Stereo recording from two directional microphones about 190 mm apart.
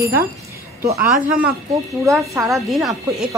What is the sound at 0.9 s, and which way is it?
Speech, 50° right (ahead or behind).